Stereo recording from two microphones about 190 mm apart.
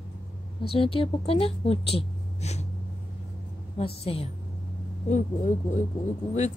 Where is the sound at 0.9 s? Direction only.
30° left (ahead or behind).